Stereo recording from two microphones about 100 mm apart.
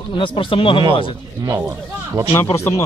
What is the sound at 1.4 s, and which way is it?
Speech, 30° right (ahead or behind).